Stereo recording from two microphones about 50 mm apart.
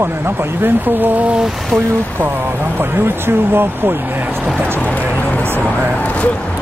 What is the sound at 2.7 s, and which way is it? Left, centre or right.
Speech, right.